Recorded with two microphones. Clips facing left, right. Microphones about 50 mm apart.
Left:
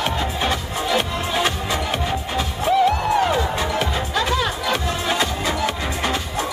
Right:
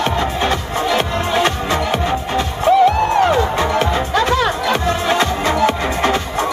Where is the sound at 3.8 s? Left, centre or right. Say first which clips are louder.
Right 6 dB; centre.